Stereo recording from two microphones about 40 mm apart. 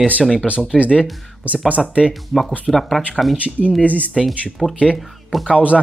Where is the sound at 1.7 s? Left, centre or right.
Right.